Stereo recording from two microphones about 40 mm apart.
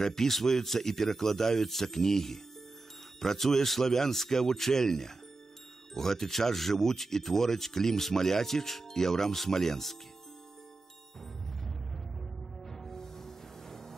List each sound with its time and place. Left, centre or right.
0.0 s speech: centre
12.6 s music: centre